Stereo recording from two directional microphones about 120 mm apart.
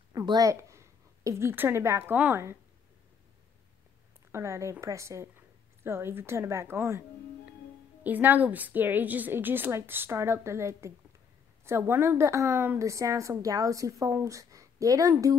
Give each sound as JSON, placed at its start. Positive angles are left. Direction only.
{"t": 0.2, "sound": "a woman's voice", "side_deg": -35}
{"t": 4.3, "sound": "a woman's voice", "side_deg": -25}
{"t": 8.0, "sound": "a woman's voice", "side_deg": -15}